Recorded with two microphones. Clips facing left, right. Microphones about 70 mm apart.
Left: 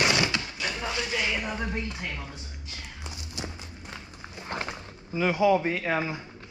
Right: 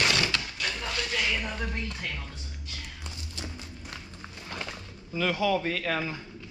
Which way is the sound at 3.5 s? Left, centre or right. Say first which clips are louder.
Even; centre.